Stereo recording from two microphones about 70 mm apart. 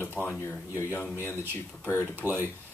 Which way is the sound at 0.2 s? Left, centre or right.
Centre.